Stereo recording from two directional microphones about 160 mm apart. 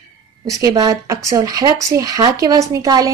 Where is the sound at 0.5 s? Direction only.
20° right (ahead or behind).